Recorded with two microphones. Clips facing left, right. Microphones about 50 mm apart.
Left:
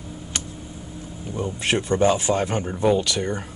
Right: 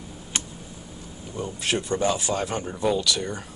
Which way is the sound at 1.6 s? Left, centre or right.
Left.